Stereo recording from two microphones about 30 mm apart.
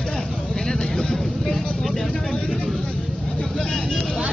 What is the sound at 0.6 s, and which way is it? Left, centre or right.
Vehicle, centre.